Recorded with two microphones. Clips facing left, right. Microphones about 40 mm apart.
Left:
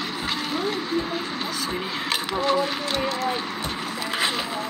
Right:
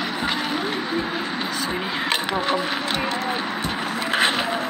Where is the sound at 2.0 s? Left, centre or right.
Right.